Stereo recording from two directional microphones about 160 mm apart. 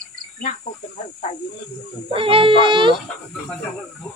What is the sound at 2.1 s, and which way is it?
Speech, 35° right (ahead or behind).